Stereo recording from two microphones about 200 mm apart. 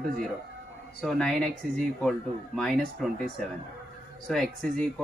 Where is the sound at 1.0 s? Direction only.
Centre (ahead or behind).